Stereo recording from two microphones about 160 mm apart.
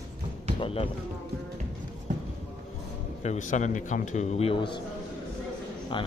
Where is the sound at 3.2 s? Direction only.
50° left (ahead or behind); by 4.8 s 30° left (ahead or behind).